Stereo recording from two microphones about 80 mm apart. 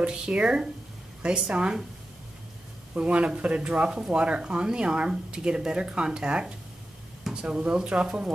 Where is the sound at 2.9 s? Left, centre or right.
Centre.